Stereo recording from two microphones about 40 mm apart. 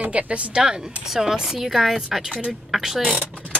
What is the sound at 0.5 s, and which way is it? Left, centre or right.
A woman's voice, right.